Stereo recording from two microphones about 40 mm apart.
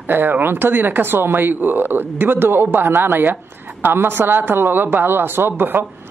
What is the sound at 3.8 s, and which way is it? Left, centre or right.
Mantra, right.